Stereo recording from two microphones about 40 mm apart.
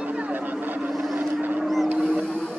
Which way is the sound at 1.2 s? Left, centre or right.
Right.